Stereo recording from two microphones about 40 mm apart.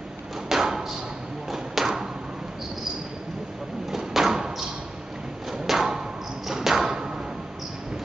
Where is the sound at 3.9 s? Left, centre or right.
Centre.